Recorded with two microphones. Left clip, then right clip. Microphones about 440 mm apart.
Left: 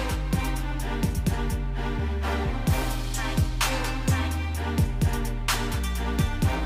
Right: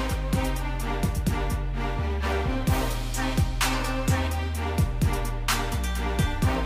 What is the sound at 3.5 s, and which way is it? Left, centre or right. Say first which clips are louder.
Music: even; centre.